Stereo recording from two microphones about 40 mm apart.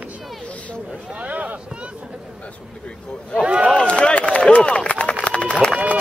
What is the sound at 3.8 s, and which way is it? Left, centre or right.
Run, left.